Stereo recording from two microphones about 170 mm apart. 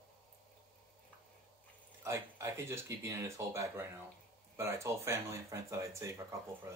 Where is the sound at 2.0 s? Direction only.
15° right (ahead or behind).